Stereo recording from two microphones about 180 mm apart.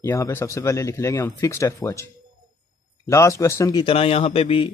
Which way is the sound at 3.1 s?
15° left (ahead or behind).